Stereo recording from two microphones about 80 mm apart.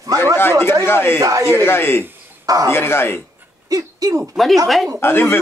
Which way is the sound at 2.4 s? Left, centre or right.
Right.